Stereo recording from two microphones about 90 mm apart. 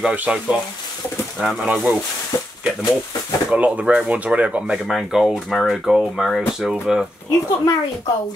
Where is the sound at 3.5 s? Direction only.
15° right (ahead or behind).